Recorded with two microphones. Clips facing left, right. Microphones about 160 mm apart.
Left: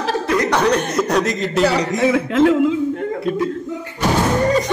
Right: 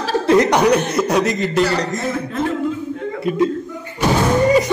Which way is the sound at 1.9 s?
85° left.